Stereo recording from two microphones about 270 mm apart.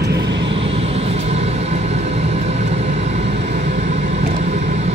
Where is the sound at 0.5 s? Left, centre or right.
Right.